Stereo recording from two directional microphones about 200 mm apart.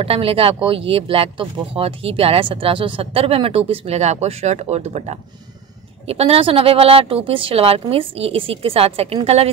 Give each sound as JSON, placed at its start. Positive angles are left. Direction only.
{"t": 0.0, "sound": "speech", "side_deg": -30}